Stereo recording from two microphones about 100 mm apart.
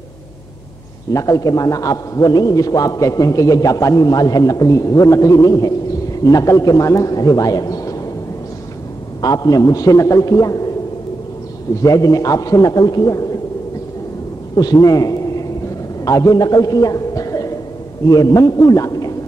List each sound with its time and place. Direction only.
1.1 s a man's voice: 35° left (ahead or behind)
9.2 s a man's voice: 40° left (ahead or behind)
11.8 s a man's voice: 35° left (ahead or behind)
14.5 s a man's voice: 40° left (ahead or behind)